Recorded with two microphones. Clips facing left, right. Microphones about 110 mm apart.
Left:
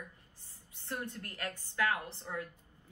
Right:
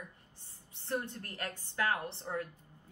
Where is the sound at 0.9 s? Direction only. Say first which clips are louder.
Right 3 dB; 30° right (ahead or behind).